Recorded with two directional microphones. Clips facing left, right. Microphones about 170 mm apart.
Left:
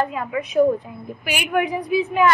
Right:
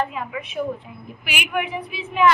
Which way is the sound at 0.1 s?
45° left (ahead or behind).